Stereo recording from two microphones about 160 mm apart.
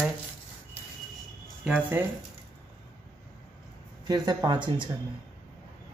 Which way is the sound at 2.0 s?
10° right (ahead or behind).